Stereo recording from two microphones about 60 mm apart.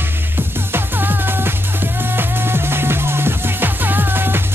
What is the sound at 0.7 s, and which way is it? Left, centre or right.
Music, right.